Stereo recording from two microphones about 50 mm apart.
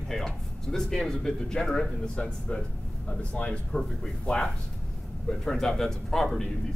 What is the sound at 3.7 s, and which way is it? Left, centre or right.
A man's voice, centre.